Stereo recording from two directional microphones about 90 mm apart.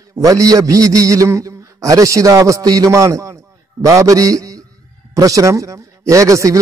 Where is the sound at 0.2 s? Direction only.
40° right (ahead or behind).